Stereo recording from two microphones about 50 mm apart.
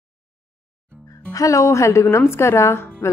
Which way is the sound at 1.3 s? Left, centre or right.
Left.